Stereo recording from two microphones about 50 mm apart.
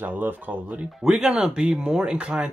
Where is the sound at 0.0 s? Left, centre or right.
Right.